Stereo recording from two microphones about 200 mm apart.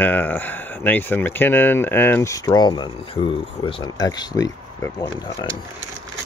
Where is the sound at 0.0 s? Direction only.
10° left (ahead or behind).